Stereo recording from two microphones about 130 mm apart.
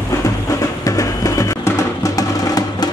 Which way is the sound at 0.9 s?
25° left (ahead or behind).